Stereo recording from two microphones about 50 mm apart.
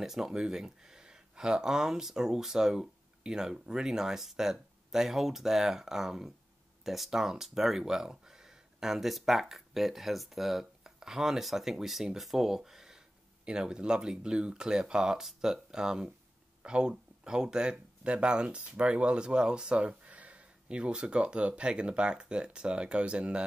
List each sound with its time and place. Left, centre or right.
0.0 s speech: centre